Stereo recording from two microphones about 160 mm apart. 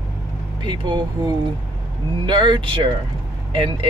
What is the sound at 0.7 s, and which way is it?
Speech, 30° right (ahead or behind).